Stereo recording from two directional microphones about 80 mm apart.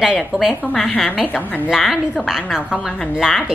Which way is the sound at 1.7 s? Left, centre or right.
Centre.